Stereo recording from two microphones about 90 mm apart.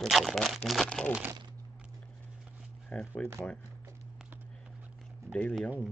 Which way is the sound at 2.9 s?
15° left (ahead or behind).